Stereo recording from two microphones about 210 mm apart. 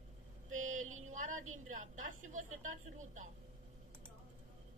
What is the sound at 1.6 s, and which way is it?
A woman's voice, 35° right (ahead or behind).